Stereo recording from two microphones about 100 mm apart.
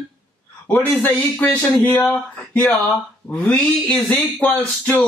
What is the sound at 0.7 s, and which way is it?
Speech, 15° left (ahead or behind).